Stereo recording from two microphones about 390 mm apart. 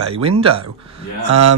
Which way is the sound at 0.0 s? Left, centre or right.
Centre.